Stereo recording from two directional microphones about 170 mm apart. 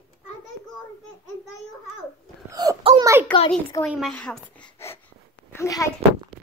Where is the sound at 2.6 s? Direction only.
25° right (ahead or behind).